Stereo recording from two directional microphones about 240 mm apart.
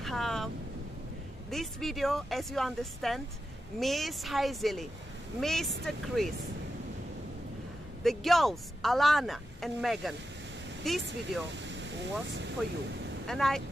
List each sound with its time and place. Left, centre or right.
0.0 s speech: centre
1.5 s a woman's voice: centre
8.0 s a woman's voice: centre
11.4 s speech: right
13.3 s a woman's voice: centre